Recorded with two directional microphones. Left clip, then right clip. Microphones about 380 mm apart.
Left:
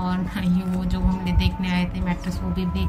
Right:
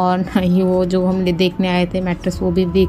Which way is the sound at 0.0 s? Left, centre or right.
Centre.